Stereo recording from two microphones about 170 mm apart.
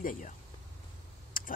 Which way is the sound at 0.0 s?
50° left (ahead or behind).